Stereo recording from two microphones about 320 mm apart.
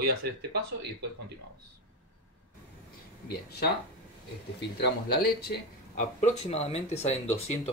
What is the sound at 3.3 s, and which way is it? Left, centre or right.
Speech, left.